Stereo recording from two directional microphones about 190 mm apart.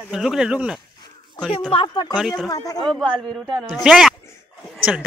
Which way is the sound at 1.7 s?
25° left (ahead or behind).